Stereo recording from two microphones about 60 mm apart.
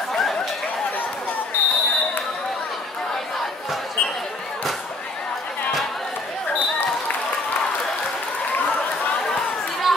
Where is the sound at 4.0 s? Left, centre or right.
Left.